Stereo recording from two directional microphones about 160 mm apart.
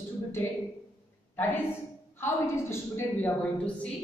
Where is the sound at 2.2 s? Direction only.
15° left (ahead or behind).